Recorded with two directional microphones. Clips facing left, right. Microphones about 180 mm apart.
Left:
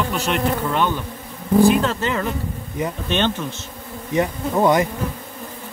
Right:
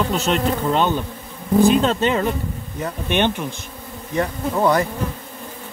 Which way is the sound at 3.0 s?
15° right (ahead or behind).